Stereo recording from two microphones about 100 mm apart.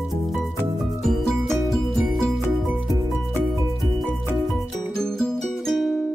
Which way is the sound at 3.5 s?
Centre (ahead or behind).